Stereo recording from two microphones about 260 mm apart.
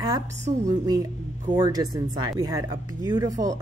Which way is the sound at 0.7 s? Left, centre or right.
Centre.